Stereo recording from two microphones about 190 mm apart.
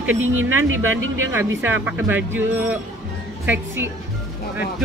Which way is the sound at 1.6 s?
10° right (ahead or behind).